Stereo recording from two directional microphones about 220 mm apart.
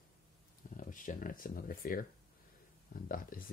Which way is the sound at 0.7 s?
35° left (ahead or behind).